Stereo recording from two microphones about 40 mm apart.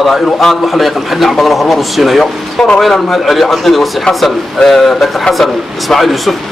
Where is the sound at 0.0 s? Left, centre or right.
Centre.